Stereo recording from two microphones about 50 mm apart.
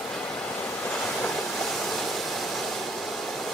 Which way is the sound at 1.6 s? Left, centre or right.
Centre.